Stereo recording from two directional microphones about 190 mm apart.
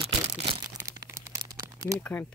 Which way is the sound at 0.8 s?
15° right (ahead or behind).